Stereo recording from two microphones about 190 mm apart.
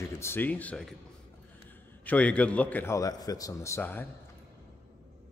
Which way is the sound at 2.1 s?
5° left (ahead or behind).